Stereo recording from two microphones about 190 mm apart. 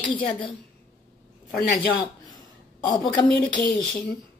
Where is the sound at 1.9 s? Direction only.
20° left (ahead or behind).